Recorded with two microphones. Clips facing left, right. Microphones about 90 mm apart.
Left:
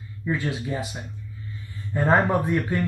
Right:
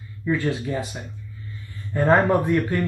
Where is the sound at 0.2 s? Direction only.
15° left (ahead or behind).